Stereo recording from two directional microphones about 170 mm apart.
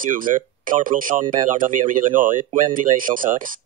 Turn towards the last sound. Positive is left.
turn(degrees=-55)  # may be behind; listen again after turning